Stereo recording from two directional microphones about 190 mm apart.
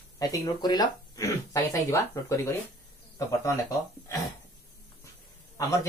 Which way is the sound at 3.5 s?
15° left (ahead or behind).